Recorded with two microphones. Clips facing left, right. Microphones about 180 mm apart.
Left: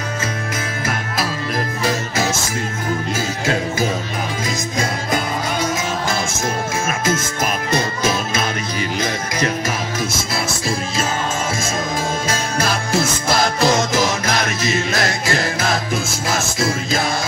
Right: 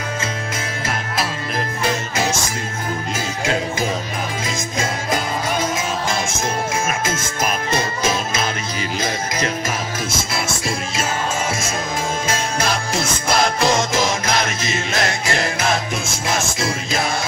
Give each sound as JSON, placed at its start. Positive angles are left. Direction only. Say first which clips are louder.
{"t": 13.4, "sound": "music", "louder": "left 1 dB", "side_deg": 40}